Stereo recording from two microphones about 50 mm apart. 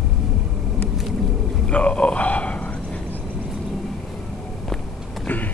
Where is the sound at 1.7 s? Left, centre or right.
Left.